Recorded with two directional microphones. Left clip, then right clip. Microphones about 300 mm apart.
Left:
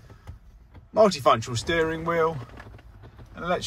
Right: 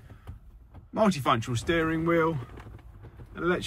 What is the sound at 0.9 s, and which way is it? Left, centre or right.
Speech, centre.